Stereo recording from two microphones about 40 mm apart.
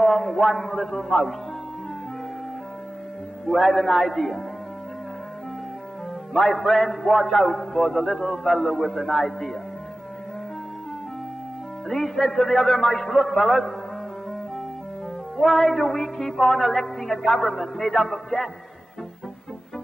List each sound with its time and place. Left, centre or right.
0.0 s a woman's voice: centre
3.4 s a woman's voice: centre
6.4 s a man's voice: centre
11.9 s a man's voice: centre
15.3 s a woman's voice: centre